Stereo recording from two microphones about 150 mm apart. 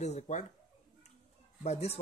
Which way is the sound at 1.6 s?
45° left (ahead or behind).